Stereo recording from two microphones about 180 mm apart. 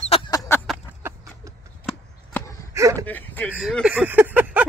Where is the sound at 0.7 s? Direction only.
Centre (ahead or behind).